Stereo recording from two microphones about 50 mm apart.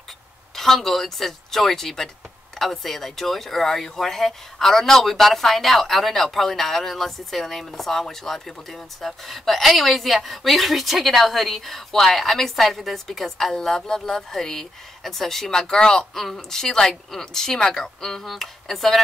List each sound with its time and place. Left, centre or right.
0.6 s a woman's voice: centre